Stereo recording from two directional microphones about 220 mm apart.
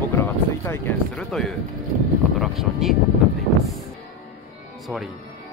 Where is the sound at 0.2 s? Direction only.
10° left (ahead or behind).